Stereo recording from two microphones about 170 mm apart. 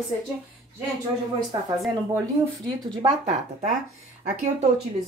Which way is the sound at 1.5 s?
25° right (ahead or behind).